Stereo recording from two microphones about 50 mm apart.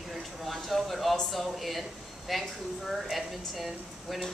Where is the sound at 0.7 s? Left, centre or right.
Centre.